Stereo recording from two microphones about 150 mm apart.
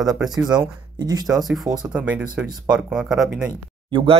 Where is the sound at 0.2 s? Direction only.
Centre (ahead or behind).